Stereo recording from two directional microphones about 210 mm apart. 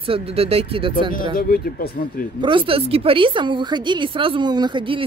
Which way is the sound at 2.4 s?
25° right (ahead or behind).